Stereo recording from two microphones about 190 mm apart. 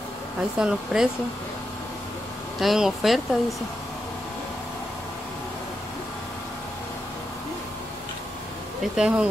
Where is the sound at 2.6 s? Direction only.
Centre (ahead or behind).